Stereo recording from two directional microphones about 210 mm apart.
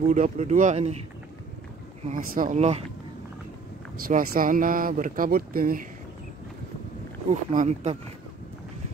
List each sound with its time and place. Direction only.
0.1 s speech: 35° right (ahead or behind)
2.0 s speech: 40° right (ahead or behind)
4.1 s speech: 45° right (ahead or behind)
7.2 s speech: 35° right (ahead or behind)